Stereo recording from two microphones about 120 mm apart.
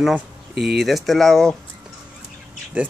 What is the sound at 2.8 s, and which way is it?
Speech, 10° right (ahead or behind).